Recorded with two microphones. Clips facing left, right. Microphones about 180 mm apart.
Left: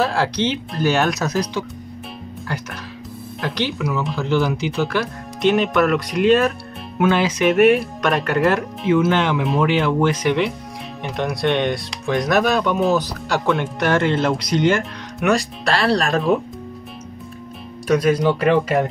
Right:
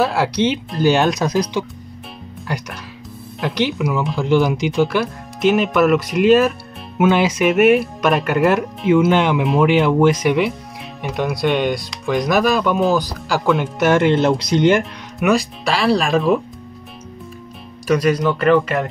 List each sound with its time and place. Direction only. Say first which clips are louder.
0.0 s speech: right 2 dB; 10° right (ahead or behind)
3.3 s speech: right 4 dB; 10° right (ahead or behind)
15.1 s speech: right 2 dB; centre (ahead or behind)
17.8 s speech: even; 5° left (ahead or behind)